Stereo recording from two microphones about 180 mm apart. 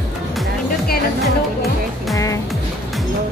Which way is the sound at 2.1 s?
20° left (ahead or behind).